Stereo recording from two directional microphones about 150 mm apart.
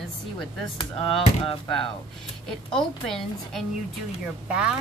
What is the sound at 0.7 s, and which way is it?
Speech, 35° left (ahead or behind).